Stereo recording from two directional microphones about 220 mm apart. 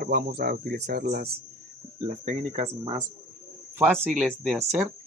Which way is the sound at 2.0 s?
30° right (ahead or behind).